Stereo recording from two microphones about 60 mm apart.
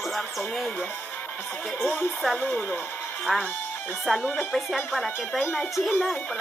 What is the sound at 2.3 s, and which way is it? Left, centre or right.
Speech, left.